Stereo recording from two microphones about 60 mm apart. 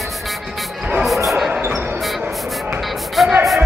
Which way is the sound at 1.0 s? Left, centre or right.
Centre.